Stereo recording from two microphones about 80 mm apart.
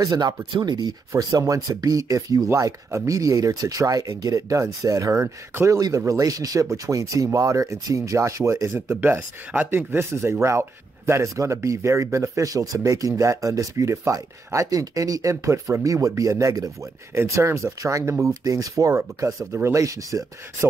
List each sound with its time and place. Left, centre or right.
0.1 s speech: right
0.5 s speech: right
1.1 s speech: right
5.5 s speech: right
5.8 s speech: right
8.7 s speech: right
18.3 s speech: right